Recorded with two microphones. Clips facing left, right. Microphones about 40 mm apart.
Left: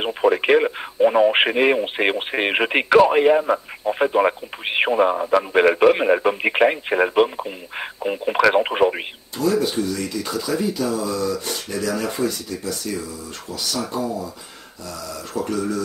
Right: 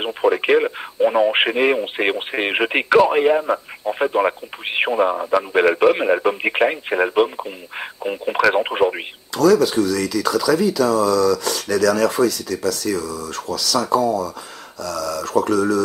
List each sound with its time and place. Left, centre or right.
0.0 s speech: centre
9.4 s speech: right